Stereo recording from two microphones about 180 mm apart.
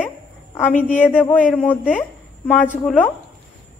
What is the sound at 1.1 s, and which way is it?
Speech, 10° left (ahead or behind).